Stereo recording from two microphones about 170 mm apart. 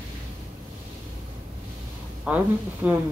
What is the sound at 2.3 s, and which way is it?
Speech, 5° right (ahead or behind).